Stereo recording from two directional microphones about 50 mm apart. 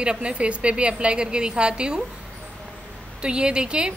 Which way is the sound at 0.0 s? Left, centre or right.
Centre.